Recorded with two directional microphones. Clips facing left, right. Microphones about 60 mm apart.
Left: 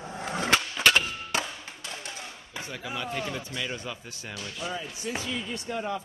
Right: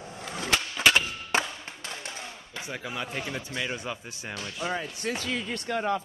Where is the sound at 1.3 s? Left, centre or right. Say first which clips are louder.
Right 4 dB; right.